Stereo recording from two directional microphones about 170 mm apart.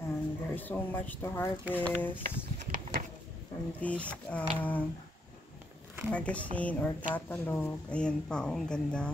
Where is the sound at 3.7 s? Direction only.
10° left (ahead or behind).